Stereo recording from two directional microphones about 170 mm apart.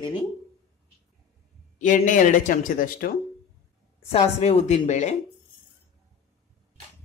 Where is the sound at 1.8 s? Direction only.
50° left (ahead or behind).